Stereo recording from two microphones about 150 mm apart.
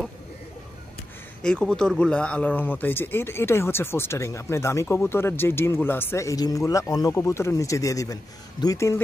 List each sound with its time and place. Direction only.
1.4 s speech: 5° left (ahead or behind)